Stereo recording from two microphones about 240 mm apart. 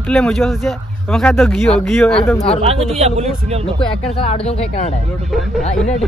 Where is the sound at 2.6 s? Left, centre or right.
Right.